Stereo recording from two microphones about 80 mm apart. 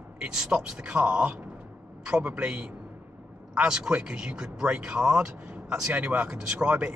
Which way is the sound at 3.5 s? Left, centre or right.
Centre.